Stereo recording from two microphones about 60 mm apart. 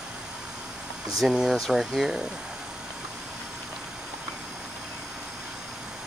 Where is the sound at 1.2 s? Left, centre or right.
Centre.